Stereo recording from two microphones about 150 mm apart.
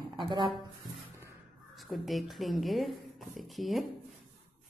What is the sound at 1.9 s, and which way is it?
A woman's voice, centre (ahead or behind).